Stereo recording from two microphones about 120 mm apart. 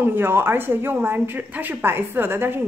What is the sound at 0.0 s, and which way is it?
A woman's voice, 20° right (ahead or behind).